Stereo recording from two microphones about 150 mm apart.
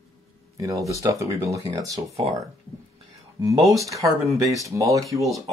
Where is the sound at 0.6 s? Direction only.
20° right (ahead or behind).